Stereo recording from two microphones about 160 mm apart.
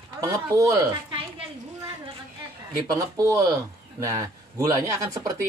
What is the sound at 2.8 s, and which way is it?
Speech, 20° right (ahead or behind).